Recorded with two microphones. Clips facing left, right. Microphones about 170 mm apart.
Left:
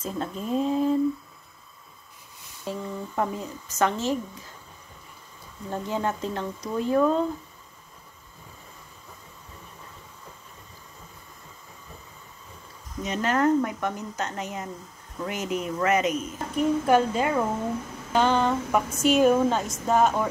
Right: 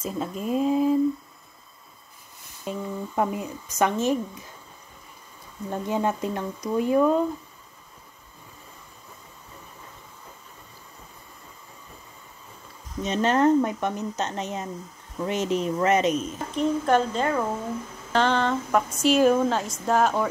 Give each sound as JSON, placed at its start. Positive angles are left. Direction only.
{"t": 0.0, "sound": "speech", "side_deg": -5}
{"t": 2.6, "sound": "speech", "side_deg": -15}
{"t": 5.7, "sound": "speech", "side_deg": -15}
{"t": 13.0, "sound": "speech", "side_deg": -25}
{"t": 16.5, "sound": "a woman's voice", "side_deg": 10}